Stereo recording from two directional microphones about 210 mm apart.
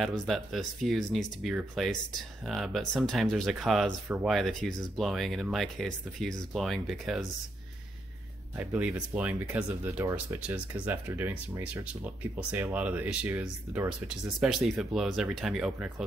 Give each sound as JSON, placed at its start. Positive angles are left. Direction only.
{"t": 0.0, "sound": "speech", "side_deg": 0}
{"t": 8.5, "sound": "speech", "side_deg": -5}